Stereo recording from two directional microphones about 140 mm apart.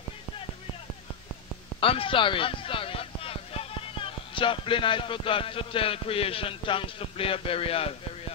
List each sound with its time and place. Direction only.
1.8 s speech: 40° left (ahead or behind)